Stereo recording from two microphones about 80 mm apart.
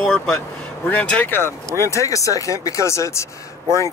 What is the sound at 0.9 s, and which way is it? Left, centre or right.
Speech, centre.